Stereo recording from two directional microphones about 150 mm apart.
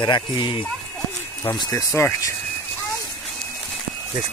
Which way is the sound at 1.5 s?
20° left (ahead or behind).